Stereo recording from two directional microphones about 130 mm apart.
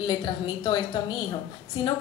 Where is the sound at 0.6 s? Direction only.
35° left (ahead or behind).